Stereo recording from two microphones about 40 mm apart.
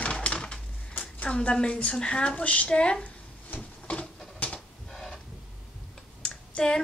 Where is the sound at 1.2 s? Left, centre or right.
Left.